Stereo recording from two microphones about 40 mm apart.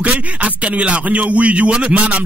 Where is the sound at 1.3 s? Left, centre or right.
Right.